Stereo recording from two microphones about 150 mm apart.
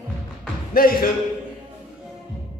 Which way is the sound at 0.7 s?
80° left.